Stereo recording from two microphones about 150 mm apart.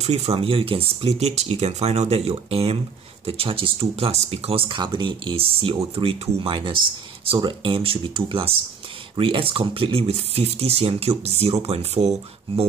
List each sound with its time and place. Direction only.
0.0 s speech: 45° right (ahead or behind)